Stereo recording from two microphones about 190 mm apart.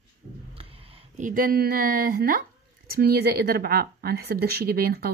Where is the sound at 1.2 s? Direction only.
45° right (ahead or behind).